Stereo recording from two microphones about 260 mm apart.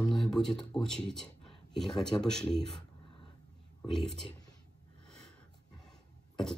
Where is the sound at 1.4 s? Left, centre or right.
Centre.